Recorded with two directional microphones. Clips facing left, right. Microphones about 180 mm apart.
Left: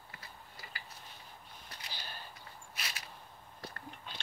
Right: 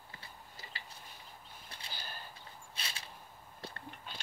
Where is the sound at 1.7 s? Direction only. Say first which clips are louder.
Even; 30° right (ahead or behind).